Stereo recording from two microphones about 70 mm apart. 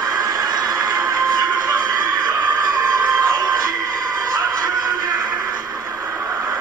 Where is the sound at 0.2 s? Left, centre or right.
Right.